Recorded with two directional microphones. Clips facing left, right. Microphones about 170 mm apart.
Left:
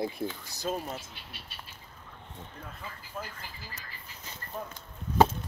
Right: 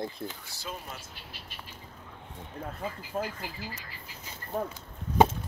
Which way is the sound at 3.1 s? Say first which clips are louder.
Right 8 dB; 45° right (ahead or behind).